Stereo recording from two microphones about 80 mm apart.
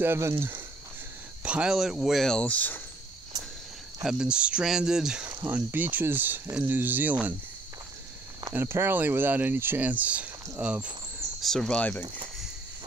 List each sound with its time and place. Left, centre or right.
0.0 s speech: right
1.4 s speech: centre
2.2 s speech: centre
4.0 s speech: centre
5.4 s speech: right
8.5 s speech: right
11.4 s speech: centre